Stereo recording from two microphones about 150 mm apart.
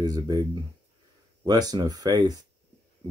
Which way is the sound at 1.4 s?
25° right (ahead or behind).